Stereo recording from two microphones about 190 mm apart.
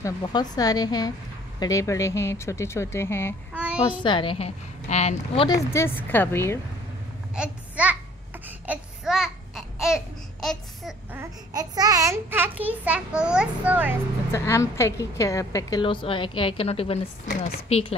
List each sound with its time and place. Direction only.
0.0 s a woman's voice: 20° left (ahead or behind)
3.5 s child singing: 5° right (ahead or behind)
4.0 s a woman's voice: 25° left (ahead or behind)
5.6 s speech: 15° left (ahead or behind)
7.3 s a child's voice: 5° right (ahead or behind)
8.5 s babbling: 5° right (ahead or behind)
11.1 s a child's voice: 20° right (ahead or behind)
14.3 s a woman's voice: 15° left (ahead or behind); by 17.9 s 35° left (ahead or behind)